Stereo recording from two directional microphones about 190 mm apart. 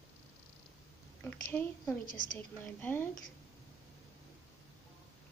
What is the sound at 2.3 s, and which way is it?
Speech, 10° left (ahead or behind).